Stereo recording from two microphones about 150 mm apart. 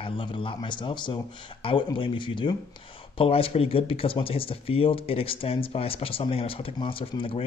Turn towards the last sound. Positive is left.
turn(degrees=35)  # may be behind; listen again after turning